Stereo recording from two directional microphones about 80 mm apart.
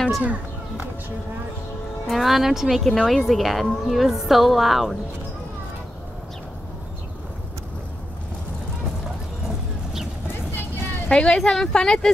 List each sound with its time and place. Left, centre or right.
0.2 s speech: centre
2.0 s a woman's voice: centre
11.1 s speech: centre